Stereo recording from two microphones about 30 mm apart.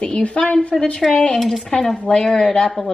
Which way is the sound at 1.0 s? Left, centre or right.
Centre.